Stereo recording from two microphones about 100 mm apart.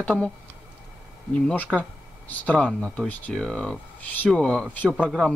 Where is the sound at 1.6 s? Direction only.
15° left (ahead or behind).